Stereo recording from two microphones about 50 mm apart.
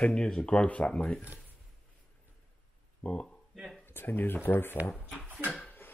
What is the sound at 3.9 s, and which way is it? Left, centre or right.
Speech, left.